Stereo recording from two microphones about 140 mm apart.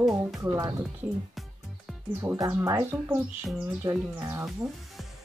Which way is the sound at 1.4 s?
Centre (ahead or behind).